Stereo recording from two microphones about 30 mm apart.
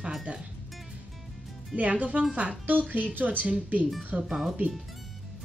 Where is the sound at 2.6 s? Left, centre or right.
Right.